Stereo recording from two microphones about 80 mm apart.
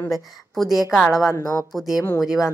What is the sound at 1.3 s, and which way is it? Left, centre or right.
Speech, left.